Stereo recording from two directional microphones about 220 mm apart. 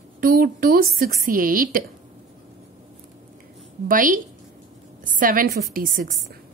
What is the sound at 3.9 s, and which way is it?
A woman's voice, 35° right (ahead or behind).